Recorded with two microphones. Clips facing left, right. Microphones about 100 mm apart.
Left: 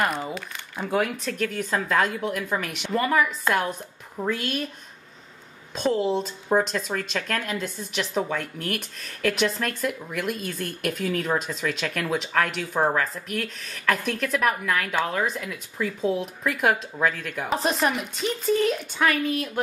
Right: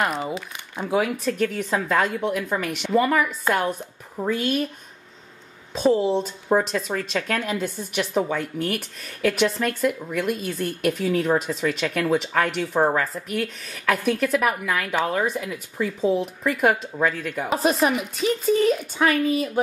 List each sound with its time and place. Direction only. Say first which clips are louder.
0.7 s speech: right 2 dB; 5° right (ahead or behind)
5.7 s speech: right 4 dB; centre (ahead or behind)